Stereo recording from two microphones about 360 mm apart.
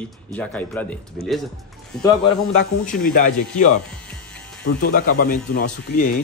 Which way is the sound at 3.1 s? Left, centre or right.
Centre.